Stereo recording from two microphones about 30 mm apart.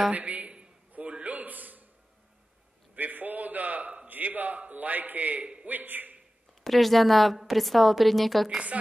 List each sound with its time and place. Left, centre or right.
0.1 s a woman's voice: right
1.2 s a sound: right
3.0 s a man's voice: right
4.1 s a man's voice: right
5.4 s a man's voice: right
5.7 s a man's voice: right
6.6 s a woman's voice: centre